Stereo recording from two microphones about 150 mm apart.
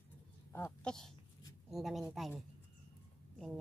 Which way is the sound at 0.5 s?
15° left (ahead or behind).